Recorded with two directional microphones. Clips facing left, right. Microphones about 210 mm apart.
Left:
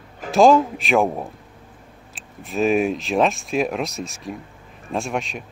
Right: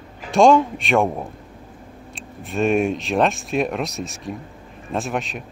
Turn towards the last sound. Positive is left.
turn(degrees=0)  # may be behind; listen again after turning